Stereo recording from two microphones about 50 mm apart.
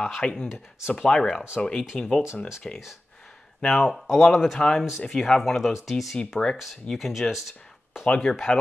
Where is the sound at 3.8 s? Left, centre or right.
Centre.